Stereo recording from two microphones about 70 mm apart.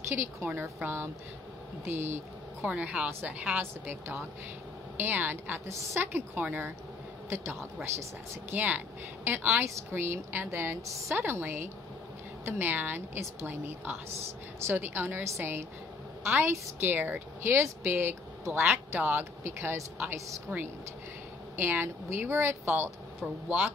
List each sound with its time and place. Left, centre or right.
0.1 s a woman's voice: right
2.6 s speech: centre
3.1 s a woman's voice: right
3.3 s speech: centre
3.8 s a woman's voice: right
7.2 s a woman's voice: right
8.5 s a woman's voice: right
14.7 s a woman's voice: right
23.2 s speech: centre